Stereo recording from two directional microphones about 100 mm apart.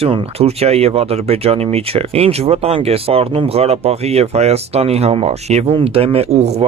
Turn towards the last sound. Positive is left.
turn(degrees=-90)